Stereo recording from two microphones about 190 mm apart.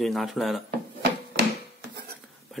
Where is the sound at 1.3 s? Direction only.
60° right (ahead or behind).